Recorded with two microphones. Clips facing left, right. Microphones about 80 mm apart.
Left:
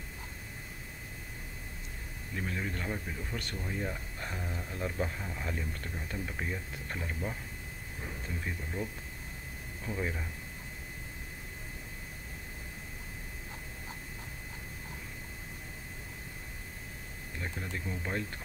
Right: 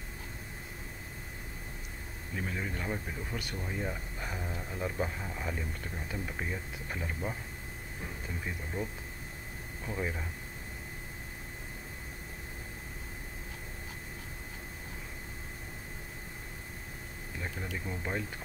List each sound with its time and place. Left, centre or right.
2.3 s speech: centre
8.8 s speech: centre
9.8 s speech: centre
17.7 s speech: centre